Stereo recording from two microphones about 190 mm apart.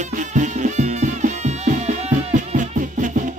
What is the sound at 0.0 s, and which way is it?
Music, 40° right (ahead or behind).